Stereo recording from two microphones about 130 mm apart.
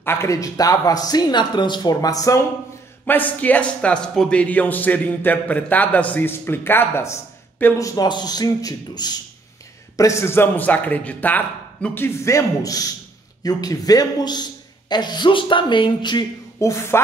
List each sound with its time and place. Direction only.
0.0 s speech: 20° left (ahead or behind)
3.1 s a man's voice: 10° left (ahead or behind)
7.9 s a man's voice: 30° left (ahead or behind)
16.5 s speech: 25° left (ahead or behind)